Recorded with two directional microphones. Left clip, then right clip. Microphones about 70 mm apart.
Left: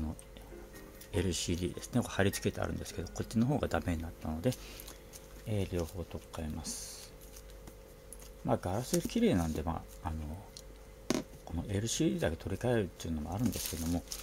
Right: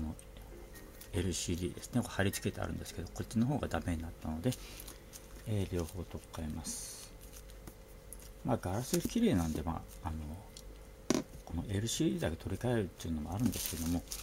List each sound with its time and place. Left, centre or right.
1.1 s speech: left
5.5 s speech: left
8.5 s speech: left
11.1 s a sound: centre
11.4 s speech: left
13.4 s speech: centre